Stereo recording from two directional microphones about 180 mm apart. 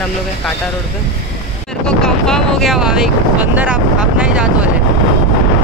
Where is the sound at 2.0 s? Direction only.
5° left (ahead or behind).